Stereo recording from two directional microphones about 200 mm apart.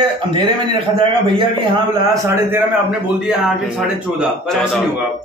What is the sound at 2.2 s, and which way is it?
Speech, 10° right (ahead or behind).